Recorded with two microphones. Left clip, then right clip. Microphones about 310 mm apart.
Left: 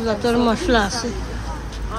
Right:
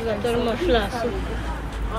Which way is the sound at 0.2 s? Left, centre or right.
Centre.